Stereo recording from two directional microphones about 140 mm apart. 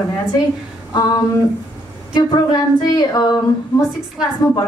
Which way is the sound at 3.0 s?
30° left (ahead or behind).